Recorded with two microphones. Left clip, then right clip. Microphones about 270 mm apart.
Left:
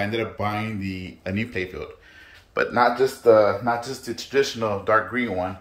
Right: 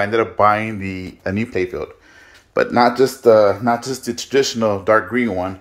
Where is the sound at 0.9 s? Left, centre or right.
Right.